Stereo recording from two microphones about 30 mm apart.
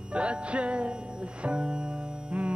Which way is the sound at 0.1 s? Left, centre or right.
Right.